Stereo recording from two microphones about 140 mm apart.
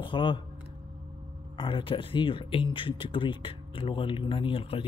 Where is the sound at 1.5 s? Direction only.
35° left (ahead or behind).